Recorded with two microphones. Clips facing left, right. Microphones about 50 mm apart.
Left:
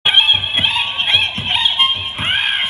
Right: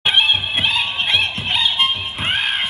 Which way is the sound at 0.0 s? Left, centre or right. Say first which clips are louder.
Left 2 dB; centre.